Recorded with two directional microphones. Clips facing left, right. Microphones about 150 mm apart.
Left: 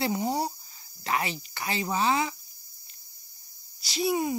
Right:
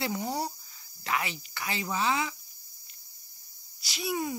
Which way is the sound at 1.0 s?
35° left (ahead or behind).